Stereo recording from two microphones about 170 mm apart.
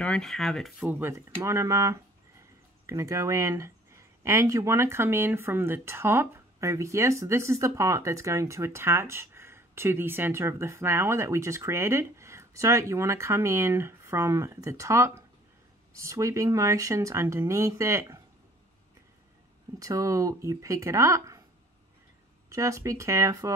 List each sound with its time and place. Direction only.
0.0 s speech: 5° left (ahead or behind)
0.7 s speech: 10° right (ahead or behind)
19.8 s speech: 20° right (ahead or behind)
22.5 s speech: 20° right (ahead or behind)